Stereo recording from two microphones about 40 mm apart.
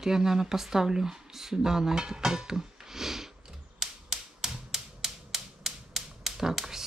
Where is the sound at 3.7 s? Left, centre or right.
Centre.